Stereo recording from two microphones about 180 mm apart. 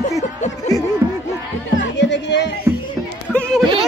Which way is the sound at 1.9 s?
80° left.